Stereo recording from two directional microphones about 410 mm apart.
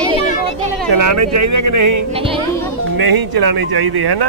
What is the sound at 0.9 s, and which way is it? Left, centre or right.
Speech, right.